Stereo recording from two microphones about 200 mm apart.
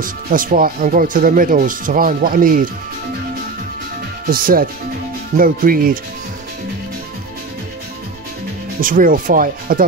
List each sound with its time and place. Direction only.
0.0 s speech: 45° right (ahead or behind)
4.3 s speech: 45° right (ahead or behind)
8.8 s speech: 45° right (ahead or behind)